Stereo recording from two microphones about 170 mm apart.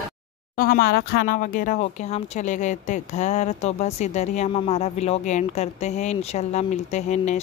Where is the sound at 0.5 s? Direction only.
55° left (ahead or behind).